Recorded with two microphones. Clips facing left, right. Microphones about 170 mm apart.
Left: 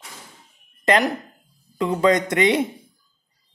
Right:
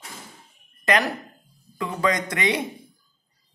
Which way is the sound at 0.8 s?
20° left (ahead or behind).